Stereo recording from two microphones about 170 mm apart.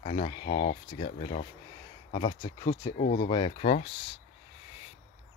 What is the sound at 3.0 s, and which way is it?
Speech, 45° left (ahead or behind).